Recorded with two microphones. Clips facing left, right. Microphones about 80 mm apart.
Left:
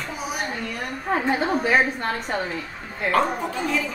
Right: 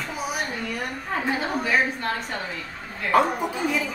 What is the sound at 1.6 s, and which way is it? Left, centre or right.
Speech, left.